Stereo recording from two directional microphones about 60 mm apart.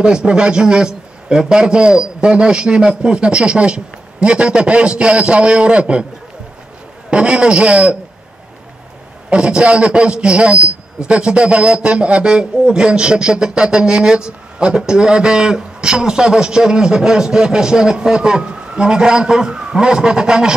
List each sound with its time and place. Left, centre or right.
0.0 s a man's voice: centre
7.1 s a man's voice: centre
9.3 s a man's voice: centre